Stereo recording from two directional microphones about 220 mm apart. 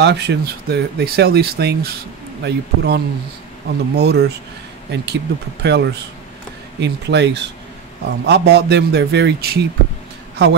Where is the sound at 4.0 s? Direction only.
50° right (ahead or behind).